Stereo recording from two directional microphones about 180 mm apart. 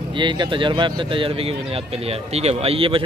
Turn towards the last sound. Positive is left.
turn(degrees=-30)  # may be behind; listen again after turning